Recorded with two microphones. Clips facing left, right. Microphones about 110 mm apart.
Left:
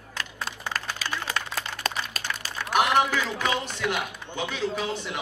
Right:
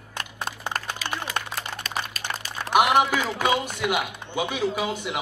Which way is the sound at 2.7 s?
10° right (ahead or behind).